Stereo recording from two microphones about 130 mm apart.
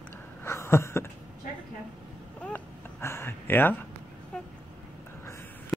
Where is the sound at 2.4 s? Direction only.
15° left (ahead or behind).